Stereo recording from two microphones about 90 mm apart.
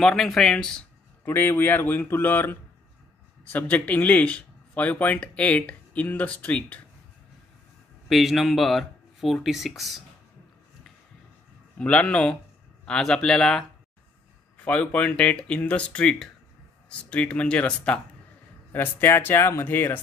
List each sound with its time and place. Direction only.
0.0 s speech: 5° left (ahead or behind)
1.2 s a man's voice: 20° left (ahead or behind)
8.1 s speech: centre (ahead or behind)
11.8 s speech: 15° left (ahead or behind)
18.7 s a man's voice: 25° left (ahead or behind)